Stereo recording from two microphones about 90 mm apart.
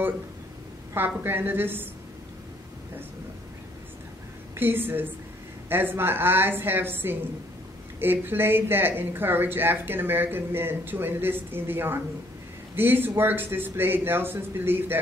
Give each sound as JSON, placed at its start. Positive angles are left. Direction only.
{"t": 0.9, "sound": "speech", "side_deg": -25}
{"t": 4.6, "sound": "speech", "side_deg": -25}